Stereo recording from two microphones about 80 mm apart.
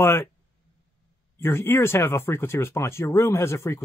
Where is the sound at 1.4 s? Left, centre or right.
Left.